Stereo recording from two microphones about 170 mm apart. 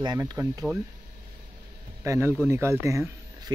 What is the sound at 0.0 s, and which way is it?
Speech, 20° right (ahead or behind).